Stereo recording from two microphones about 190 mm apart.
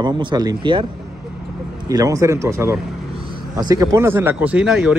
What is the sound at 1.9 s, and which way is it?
Speech, 20° right (ahead or behind).